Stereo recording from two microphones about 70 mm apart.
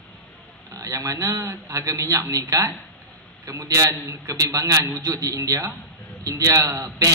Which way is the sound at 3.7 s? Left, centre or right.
Right.